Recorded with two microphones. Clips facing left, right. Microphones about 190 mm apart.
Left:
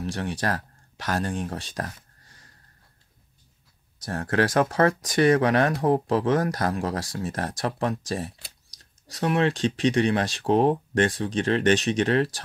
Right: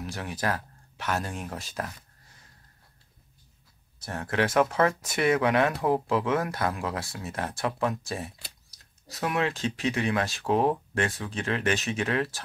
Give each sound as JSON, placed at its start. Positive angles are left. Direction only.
{"t": 0.0, "sound": "speech", "side_deg": 30}
{"t": 4.1, "sound": "speech", "side_deg": 35}